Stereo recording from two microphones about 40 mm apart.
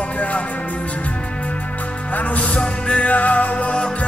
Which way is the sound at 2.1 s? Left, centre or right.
Left.